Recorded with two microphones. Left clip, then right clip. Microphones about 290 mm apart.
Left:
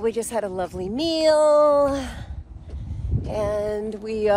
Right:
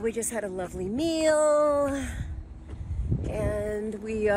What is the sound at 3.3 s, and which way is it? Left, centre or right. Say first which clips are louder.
Speech: left 6 dB; centre.